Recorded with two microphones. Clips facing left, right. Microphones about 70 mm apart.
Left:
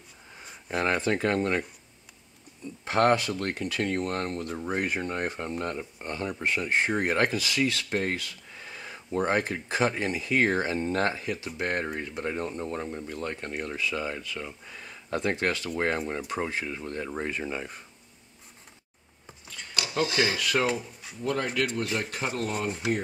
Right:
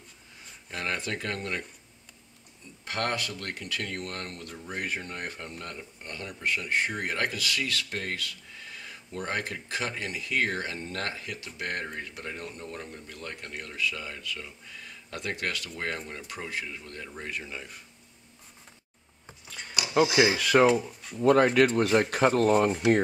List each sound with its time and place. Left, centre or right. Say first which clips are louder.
0.8 s speech: left 6 dB; left
2.8 s speech: left 8 dB; left
19.5 s a sound: even; centre
20.0 s speech: right 4 dB; centre
20.5 s speech: right 7 dB; right
21.2 s speech: right 8 dB; right